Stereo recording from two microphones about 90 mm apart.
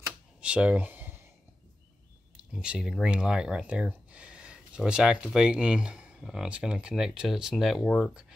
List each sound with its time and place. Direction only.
0.4 s speech: 15° right (ahead or behind)
2.3 s speech: 10° right (ahead or behind)